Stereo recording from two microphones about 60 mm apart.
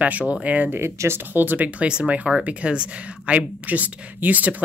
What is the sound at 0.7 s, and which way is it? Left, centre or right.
Speech, right.